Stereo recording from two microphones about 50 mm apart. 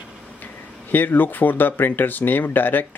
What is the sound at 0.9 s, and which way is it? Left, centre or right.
Speech, left.